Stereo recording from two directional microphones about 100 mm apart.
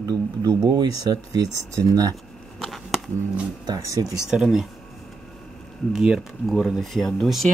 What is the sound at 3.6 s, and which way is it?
Speech, 40° right (ahead or behind).